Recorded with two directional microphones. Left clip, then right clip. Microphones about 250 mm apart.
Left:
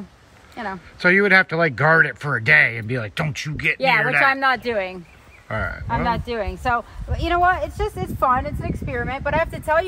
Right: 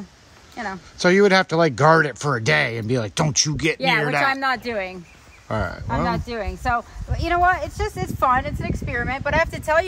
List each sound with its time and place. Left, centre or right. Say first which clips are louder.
0.6 s speech: even; centre
0.9 s speech: left 1 dB; centre
4.2 s speech: left 3 dB; centre
5.5 s speech: even; centre
5.9 s speech: left 3 dB; centre